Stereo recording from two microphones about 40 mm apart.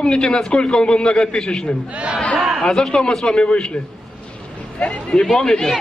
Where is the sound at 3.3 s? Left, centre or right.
Left.